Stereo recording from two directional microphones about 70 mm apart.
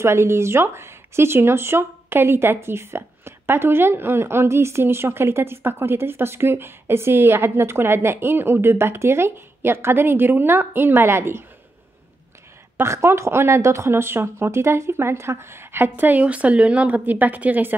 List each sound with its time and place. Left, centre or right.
0.0 s speech: right
12.8 s speech: right